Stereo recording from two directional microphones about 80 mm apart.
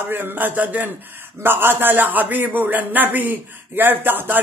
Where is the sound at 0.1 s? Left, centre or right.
Right.